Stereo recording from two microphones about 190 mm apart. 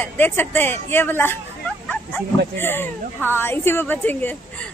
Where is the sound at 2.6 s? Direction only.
10° left (ahead or behind).